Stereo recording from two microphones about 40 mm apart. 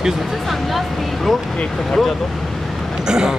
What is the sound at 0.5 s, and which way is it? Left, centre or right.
Speech, centre.